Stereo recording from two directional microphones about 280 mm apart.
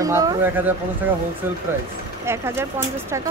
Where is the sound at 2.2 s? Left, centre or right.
Centre.